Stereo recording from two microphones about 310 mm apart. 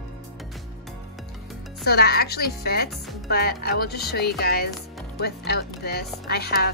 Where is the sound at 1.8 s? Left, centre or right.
Left.